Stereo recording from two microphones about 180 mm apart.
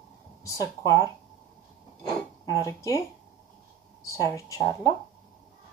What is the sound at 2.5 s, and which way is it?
Speech, 20° left (ahead or behind).